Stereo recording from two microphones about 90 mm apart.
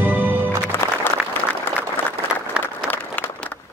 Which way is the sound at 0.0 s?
20° right (ahead or behind).